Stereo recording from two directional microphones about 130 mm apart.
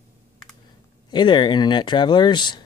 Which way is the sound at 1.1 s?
35° left (ahead or behind).